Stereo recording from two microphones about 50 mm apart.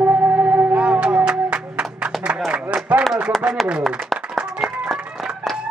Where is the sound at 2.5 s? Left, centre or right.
Right.